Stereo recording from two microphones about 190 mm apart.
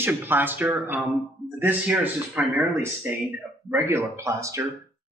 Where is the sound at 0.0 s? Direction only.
10° right (ahead or behind).